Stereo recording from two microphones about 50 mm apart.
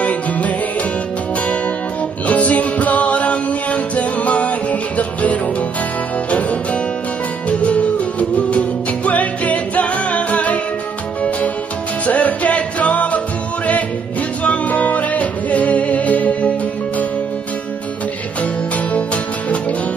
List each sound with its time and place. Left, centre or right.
0.0 s music: left
2.2 s music: left
7.4 s music: left
12.1 s music: left
14.4 s music: left
18.4 s music: left